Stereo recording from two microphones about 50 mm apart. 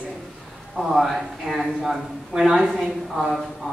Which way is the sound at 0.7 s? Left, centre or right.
Centre.